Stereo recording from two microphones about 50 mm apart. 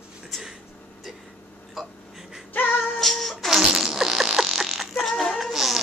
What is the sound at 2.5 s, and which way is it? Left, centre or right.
Music, left.